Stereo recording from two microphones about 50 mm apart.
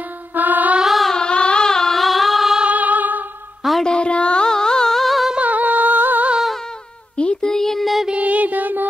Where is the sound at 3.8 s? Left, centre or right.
Centre.